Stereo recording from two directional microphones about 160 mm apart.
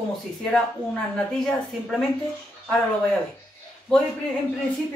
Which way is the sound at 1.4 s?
Centre (ahead or behind).